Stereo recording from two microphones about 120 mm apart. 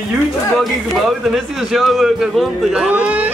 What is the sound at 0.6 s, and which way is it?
A man's voice, centre (ahead or behind).